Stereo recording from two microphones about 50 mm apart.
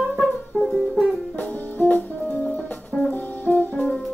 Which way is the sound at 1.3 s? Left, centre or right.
Left.